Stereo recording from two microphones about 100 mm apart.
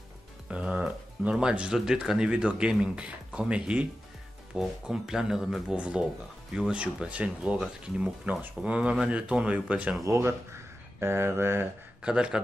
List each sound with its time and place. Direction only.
0.5 s speech: 10° right (ahead or behind)
10.0 s speech: 30° right (ahead or behind)
12.0 s speech: 10° right (ahead or behind)